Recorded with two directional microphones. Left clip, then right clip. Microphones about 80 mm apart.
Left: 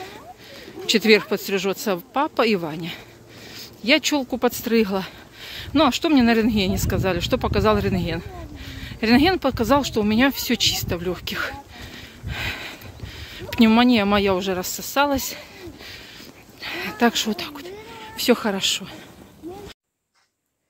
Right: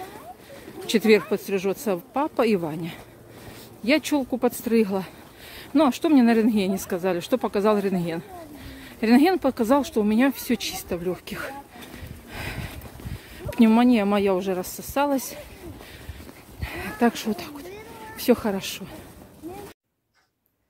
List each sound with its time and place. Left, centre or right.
0.8 s speech: right
2.4 s speech: right
10.0 s speech: centre
12.3 s a sound: centre
18.1 s speech: centre